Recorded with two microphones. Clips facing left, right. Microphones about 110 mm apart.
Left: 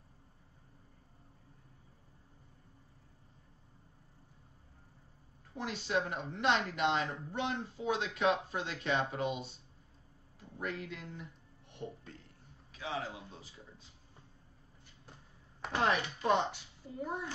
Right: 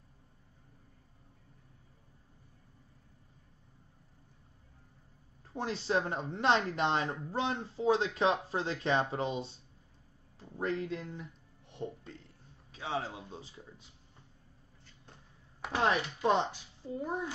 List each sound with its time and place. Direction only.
5.5 s speech: 30° right (ahead or behind)
10.6 s speech: 30° right (ahead or behind)
11.7 s music: 25° right (ahead or behind)
12.7 s a man's voice: 30° right (ahead or behind)
16.3 s a woman's voice: 30° right (ahead or behind)